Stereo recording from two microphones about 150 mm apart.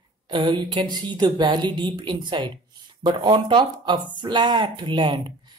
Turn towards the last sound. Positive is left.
turn(degrees=-35)  # may be behind; listen again after turning